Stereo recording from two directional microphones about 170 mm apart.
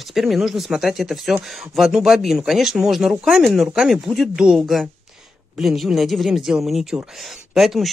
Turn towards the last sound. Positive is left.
turn(degrees=0)  # may be behind; listen again after turning